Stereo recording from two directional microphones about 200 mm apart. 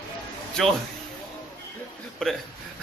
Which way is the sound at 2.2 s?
5° left (ahead or behind).